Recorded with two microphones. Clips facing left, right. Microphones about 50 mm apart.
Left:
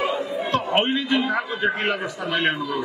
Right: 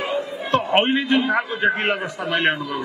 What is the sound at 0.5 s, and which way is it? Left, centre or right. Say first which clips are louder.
A man's voice: right 4 dB; right.